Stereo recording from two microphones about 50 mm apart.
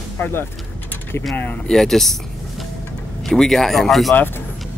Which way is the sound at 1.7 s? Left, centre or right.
Centre.